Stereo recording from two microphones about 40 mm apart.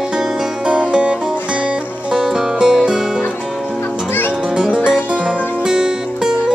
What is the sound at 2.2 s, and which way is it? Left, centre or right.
Music, centre.